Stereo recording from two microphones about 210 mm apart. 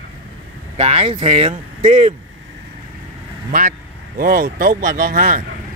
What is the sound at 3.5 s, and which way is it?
Speech, 40° right (ahead or behind).